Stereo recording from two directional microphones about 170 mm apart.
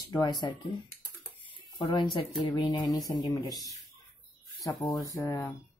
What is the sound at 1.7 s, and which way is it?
Speech, 25° left (ahead or behind).